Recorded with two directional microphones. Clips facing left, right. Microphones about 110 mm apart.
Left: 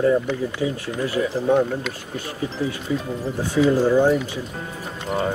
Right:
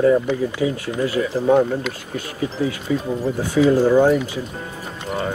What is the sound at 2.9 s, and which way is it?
Speech, 70° right (ahead or behind).